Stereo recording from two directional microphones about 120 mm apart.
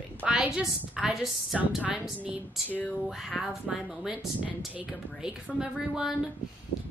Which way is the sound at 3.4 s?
5° right (ahead or behind).